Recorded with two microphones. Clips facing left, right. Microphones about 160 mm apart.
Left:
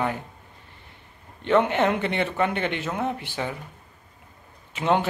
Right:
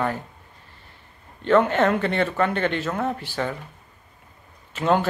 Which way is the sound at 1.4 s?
15° left (ahead or behind).